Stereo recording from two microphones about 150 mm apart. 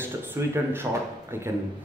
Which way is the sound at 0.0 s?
15° right (ahead or behind).